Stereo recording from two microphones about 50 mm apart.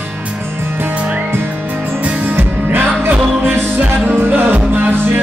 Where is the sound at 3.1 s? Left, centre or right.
Right.